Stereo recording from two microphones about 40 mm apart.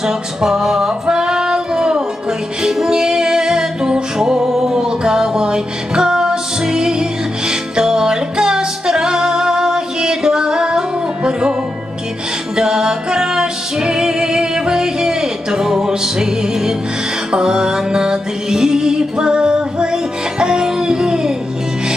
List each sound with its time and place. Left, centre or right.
0.0 s music: centre
12.5 s music: centre